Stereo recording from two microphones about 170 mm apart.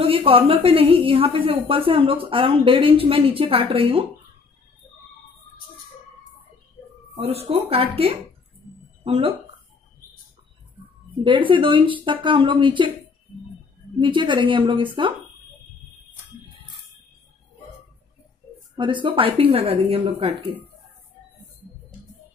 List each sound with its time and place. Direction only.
0.0 s a woman's voice: 35° right (ahead or behind)
7.2 s a woman's voice: 35° right (ahead or behind)
11.2 s speech: 30° right (ahead or behind)
13.9 s speech: 30° right (ahead or behind)
18.8 s a woman's voice: 30° right (ahead or behind)